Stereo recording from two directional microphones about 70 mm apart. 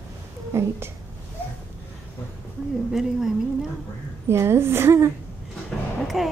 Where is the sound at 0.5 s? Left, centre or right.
Right.